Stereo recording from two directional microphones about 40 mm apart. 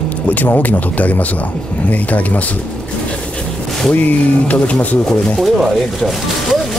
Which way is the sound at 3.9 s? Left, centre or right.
Left.